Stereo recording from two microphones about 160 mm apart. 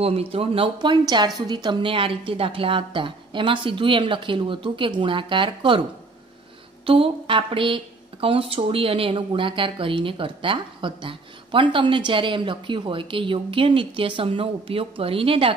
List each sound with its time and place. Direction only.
0.0 s a woman's voice: 40° right (ahead or behind)
6.9 s a woman's voice: 35° right (ahead or behind)